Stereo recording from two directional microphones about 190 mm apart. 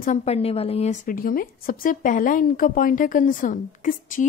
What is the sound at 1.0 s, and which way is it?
Speech, 50° left (ahead or behind).